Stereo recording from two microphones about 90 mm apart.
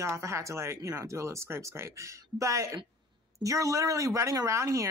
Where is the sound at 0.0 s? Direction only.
30° right (ahead or behind).